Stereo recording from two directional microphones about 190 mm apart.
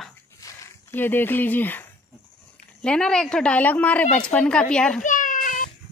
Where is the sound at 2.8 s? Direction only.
5° left (ahead or behind).